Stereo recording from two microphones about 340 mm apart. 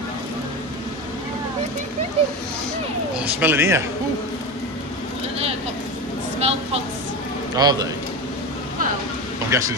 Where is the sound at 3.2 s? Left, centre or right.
Centre.